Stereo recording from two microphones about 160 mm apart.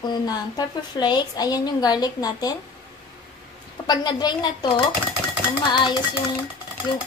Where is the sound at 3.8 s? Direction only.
25° left (ahead or behind).